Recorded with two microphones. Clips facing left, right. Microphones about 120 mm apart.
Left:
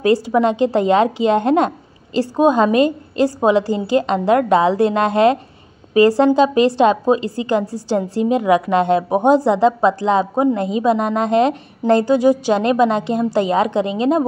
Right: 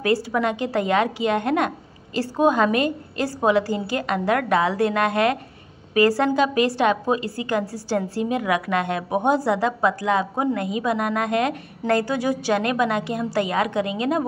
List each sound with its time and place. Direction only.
0.0 s a woman's voice: 20° left (ahead or behind)